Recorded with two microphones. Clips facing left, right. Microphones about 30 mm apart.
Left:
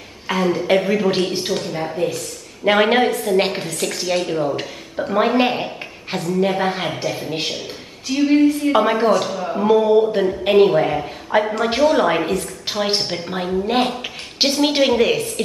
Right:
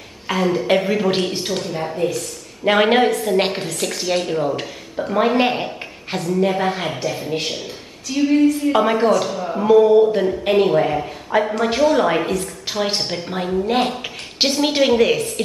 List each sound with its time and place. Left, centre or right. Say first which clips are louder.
0.3 s a woman's voice: even; centre
8.3 s a sound: left 1 dB; left
8.7 s a woman's voice: even; centre